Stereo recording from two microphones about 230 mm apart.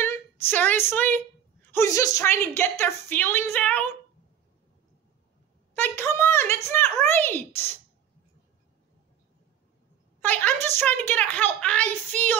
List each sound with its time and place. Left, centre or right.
0.0 s a woman's voice: centre
5.8 s a woman's voice: centre
10.2 s a woman's voice: centre